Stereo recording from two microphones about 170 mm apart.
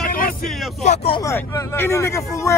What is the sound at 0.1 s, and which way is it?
Vehicle, 55° left (ahead or behind).